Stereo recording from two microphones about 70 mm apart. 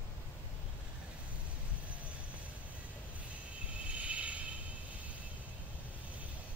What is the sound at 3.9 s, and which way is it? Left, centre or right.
Train, centre.